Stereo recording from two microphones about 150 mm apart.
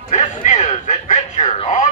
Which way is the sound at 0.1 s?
50° left (ahead or behind).